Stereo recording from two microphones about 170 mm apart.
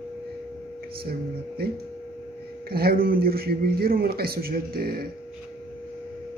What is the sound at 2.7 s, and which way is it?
A man's voice, 65° right (ahead or behind).